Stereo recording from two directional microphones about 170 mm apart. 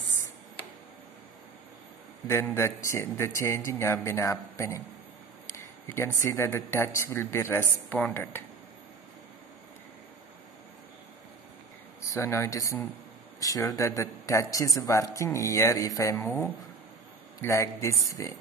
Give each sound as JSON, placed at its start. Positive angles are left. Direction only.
{"t": 2.2, "sound": "speech", "side_deg": 15}
{"t": 12.0, "sound": "speech", "side_deg": 15}